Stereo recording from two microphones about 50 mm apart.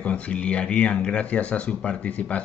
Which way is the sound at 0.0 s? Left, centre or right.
Left.